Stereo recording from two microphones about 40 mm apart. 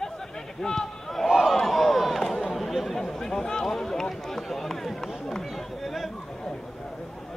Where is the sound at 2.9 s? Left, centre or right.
Centre.